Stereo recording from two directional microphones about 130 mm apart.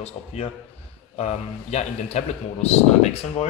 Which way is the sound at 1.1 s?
55° left (ahead or behind).